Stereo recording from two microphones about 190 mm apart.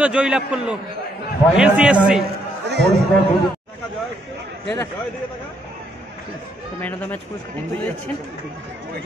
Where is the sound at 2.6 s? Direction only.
65° right (ahead or behind).